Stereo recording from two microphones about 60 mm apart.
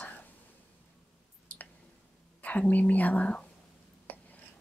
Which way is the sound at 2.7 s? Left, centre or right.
Left.